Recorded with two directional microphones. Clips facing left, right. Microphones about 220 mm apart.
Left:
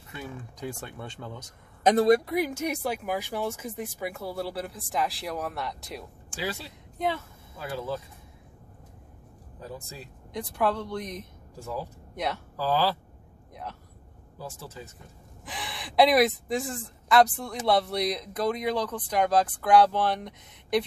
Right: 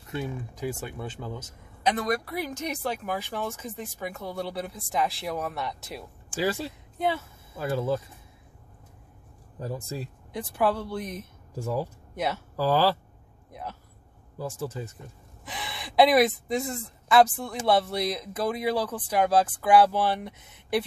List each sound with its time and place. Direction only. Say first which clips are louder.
0.6 s speech: right 3 dB; 5° right (ahead or behind)
1.8 s speech: left 6 dB; 45° left (ahead or behind)
2.0 s speech: left 7 dB; 20° left (ahead or behind); by 6.0 s centre (ahead or behind)
6.3 s speech: right 6 dB; 45° right (ahead or behind)
7.0 s speech: right 2 dB; 5° right (ahead or behind)
7.5 s speech: right 6 dB; 50° right (ahead or behind)
9.6 s speech: right 6 dB; 45° right (ahead or behind)
10.3 s speech: right 1 dB; 5° right (ahead or behind)
12.5 s speech: right 3 dB; 45° right (ahead or behind)
13.5 s a sound: right 1 dB; 5° right (ahead or behind)
14.4 s speech: right 8 dB; 50° right (ahead or behind)
15.4 s speech: right 1 dB; centre (ahead or behind)